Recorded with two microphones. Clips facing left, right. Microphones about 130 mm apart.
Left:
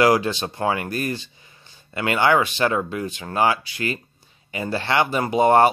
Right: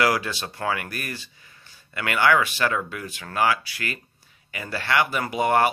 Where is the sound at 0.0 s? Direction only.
25° left (ahead or behind).